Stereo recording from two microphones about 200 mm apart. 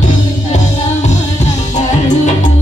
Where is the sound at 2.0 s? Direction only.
40° left (ahead or behind).